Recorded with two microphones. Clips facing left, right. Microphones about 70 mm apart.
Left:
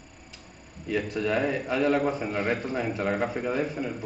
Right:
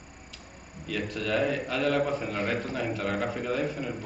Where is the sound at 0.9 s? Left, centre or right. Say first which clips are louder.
Left 3 dB; left.